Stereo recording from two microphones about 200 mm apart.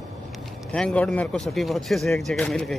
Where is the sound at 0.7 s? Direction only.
5° left (ahead or behind).